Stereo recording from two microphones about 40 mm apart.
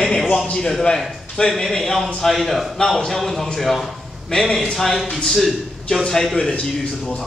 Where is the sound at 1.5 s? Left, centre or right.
Centre.